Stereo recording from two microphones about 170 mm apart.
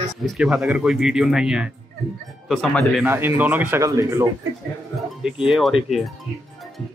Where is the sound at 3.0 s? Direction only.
15° right (ahead or behind).